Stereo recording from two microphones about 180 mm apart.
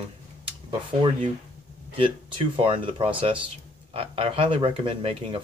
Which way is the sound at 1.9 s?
30° right (ahead or behind).